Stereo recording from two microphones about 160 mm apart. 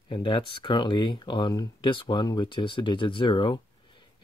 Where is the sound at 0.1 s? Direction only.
30° left (ahead or behind).